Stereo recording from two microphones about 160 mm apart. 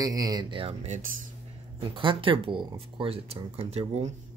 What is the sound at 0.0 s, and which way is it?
Speech, 20° right (ahead or behind).